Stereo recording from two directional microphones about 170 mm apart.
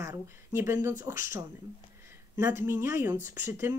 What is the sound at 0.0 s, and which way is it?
Speech, 15° right (ahead or behind).